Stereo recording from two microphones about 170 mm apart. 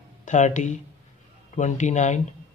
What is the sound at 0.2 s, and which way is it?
Speech, 45° left (ahead or behind).